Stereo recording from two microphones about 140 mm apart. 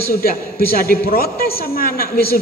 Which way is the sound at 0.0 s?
90° left.